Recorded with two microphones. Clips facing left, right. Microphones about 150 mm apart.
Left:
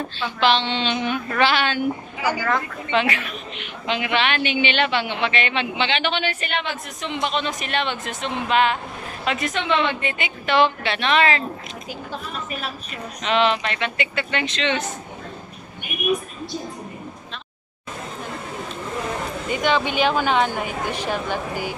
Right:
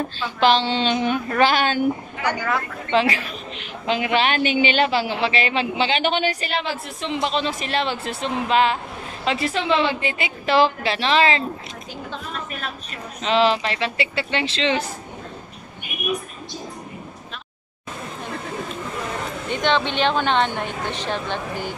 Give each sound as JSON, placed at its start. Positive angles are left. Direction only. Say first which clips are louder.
{"t": 0.4, "sound": "a woman's voice", "louder": "right 2 dB", "side_deg": -40}
{"t": 2.1, "sound": "a woman's voice", "louder": "left 1 dB", "side_deg": 5}
{"t": 2.9, "sound": "a woman's voice", "louder": "right 2 dB", "side_deg": -35}
{"t": 12.1, "sound": "a woman's voice", "louder": "left 1 dB", "side_deg": 5}
{"t": 13.2, "sound": "a woman's voice", "louder": "right 2 dB", "side_deg": -30}
{"t": 19.5, "sound": "a woman's voice", "louder": "even", "side_deg": 10}